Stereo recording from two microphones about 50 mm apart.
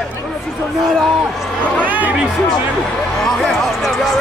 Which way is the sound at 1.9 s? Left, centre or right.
Right.